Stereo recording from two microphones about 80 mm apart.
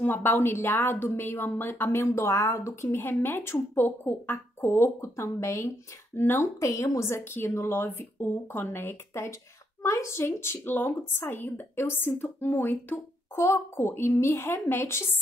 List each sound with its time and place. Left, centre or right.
0.0 s a woman's voice: left
6.6 s a woman's voice: left